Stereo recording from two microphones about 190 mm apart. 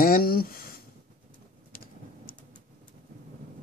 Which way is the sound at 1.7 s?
50° left (ahead or behind).